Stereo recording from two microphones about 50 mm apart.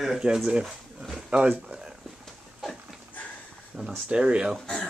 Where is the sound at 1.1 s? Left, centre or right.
Centre.